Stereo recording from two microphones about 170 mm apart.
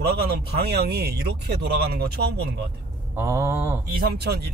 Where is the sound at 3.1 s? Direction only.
15° right (ahead or behind).